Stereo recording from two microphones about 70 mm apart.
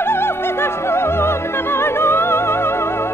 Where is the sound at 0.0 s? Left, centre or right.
Left.